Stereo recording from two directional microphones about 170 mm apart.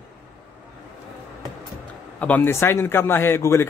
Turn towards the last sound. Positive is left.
turn(degrees=15)  # may be behind; listen again after turning